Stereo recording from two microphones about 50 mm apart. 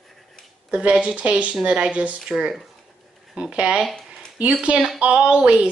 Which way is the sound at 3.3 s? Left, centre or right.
Right.